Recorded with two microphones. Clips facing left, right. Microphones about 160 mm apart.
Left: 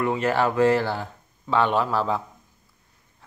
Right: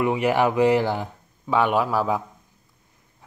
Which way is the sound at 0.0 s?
15° right (ahead or behind).